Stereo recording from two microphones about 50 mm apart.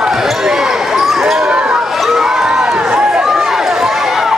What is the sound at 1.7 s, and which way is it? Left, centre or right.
Run, centre.